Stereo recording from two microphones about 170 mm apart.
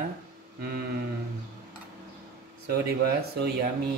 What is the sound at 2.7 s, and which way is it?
Speech, 65° right (ahead or behind).